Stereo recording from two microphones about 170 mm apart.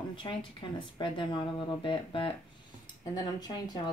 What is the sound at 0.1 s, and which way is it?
Speech, 30° left (ahead or behind).